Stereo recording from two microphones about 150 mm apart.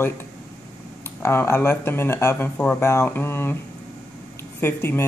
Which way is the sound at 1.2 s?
15° left (ahead or behind).